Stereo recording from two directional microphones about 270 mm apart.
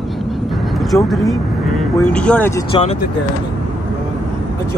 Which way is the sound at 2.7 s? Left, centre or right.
Left.